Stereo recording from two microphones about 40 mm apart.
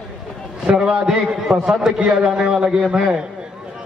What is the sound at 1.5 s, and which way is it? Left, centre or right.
Speech, right.